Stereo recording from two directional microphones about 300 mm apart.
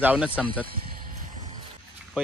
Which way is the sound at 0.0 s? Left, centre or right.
Centre.